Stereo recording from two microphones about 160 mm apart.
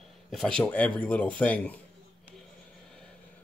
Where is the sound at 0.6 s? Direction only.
10° left (ahead or behind).